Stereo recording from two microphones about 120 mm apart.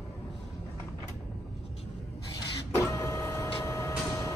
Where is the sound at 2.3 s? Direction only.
30° left (ahead or behind).